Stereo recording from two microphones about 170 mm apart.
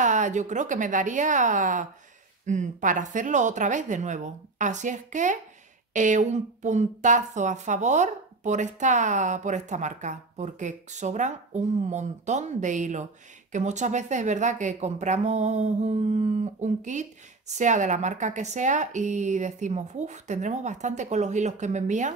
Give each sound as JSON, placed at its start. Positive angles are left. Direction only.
{"t": 0.0, "sound": "speech", "side_deg": -45}